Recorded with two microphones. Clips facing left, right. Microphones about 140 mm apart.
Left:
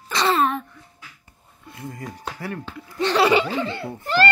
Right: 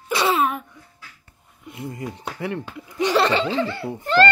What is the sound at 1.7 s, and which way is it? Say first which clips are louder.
Speech: right 3 dB; 20° right (ahead or behind).